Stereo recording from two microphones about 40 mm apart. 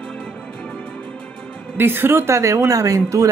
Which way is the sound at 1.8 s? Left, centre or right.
Right.